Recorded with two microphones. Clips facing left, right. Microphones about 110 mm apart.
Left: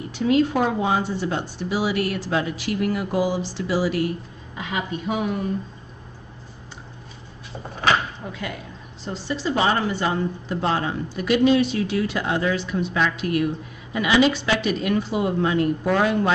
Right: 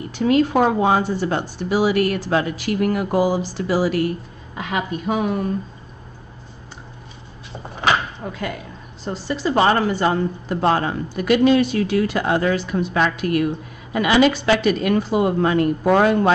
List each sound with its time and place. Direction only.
0.1 s a woman's voice: 50° right (ahead or behind)
8.3 s a woman's voice: 50° right (ahead or behind)